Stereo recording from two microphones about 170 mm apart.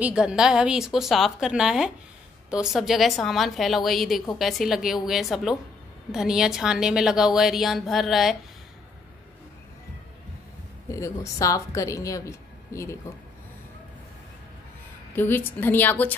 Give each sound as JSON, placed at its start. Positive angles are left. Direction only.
{"t": 0.0, "sound": "a woman's voice", "side_deg": -5}
{"t": 10.9, "sound": "speech", "side_deg": 20}
{"t": 15.1, "sound": "speech", "side_deg": 10}